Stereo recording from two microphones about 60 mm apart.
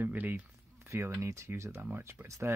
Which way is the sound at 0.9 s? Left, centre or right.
Right.